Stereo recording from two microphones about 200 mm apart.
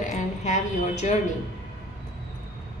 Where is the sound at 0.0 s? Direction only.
35° left (ahead or behind).